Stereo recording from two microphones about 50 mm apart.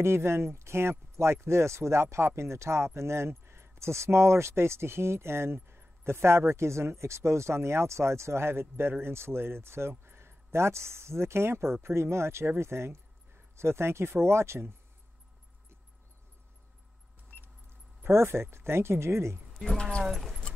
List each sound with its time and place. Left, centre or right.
0.0 s speech: right
18.0 s speech: right
20.0 s speech: centre